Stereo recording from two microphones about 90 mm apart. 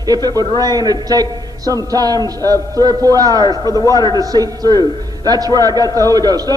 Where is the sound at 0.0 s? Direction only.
45° right (ahead or behind).